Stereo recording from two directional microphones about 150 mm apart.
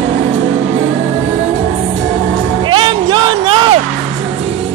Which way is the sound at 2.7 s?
35° right (ahead or behind).